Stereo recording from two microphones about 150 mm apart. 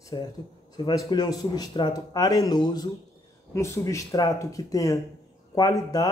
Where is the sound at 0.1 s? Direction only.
30° left (ahead or behind).